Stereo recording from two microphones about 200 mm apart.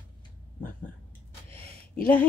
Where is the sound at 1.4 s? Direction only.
30° right (ahead or behind).